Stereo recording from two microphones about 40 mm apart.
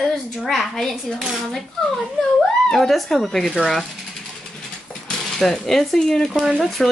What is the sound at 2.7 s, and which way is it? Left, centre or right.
Speech, centre.